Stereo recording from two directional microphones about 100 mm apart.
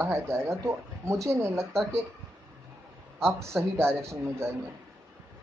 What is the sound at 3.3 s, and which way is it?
Speech, 25° right (ahead or behind).